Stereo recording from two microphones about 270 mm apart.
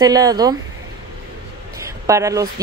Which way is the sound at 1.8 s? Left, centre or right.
Centre.